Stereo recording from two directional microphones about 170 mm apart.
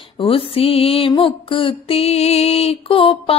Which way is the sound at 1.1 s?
30° left (ahead or behind).